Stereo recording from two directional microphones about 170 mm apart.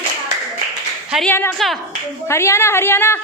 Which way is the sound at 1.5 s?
Centre (ahead or behind).